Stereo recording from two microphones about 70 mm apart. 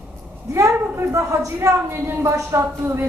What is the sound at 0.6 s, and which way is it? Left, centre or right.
A woman's voice, right.